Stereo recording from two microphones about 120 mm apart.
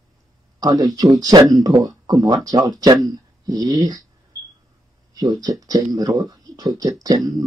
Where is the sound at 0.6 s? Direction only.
30° right (ahead or behind).